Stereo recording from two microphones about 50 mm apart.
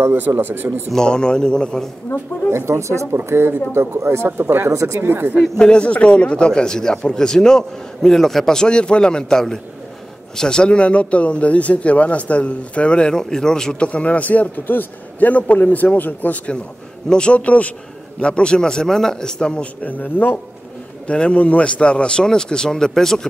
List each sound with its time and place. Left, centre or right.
0.4 s speech: right
0.9 s a man's voice: centre
2.5 s speech: right
3.3 s speech: right
4.4 s speech: right
5.6 s a man's voice: centre
13.8 s a man's voice: left
17.1 s a man's voice: left
21.1 s a man's voice: left